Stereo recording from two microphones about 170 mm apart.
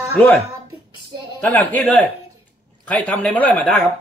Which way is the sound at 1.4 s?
5° left (ahead or behind).